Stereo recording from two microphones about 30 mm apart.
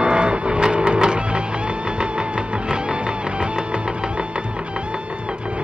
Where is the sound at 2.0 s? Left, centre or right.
Right.